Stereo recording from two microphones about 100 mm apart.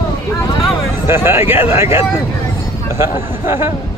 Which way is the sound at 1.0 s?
25° right (ahead or behind).